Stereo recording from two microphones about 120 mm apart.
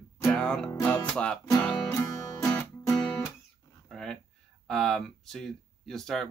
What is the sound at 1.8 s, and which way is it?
Music, 25° left (ahead or behind).